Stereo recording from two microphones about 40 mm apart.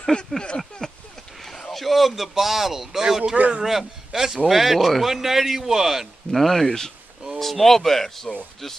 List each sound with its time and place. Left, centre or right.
0.1 s speech: left
0.6 s a sound: centre
1.7 s speech: centre
3.3 s speech: right
3.6 s speech: centre
6.3 s speech: centre